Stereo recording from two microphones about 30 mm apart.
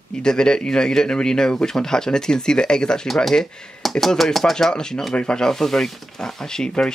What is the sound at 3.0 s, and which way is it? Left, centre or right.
Speech, centre.